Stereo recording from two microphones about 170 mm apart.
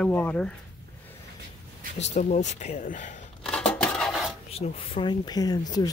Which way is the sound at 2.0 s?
40° left (ahead or behind).